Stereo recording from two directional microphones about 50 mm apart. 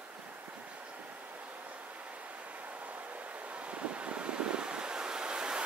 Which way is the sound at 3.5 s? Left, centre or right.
Right.